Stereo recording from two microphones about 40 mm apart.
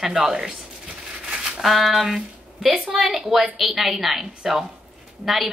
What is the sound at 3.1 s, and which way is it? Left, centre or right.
A woman's voice, centre.